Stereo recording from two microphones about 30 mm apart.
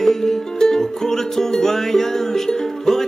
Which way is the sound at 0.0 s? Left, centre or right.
Centre.